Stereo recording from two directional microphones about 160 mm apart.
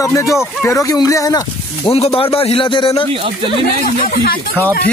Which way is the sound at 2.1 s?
35° left (ahead or behind).